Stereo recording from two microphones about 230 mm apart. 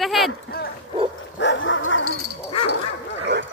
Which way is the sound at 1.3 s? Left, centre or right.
Left.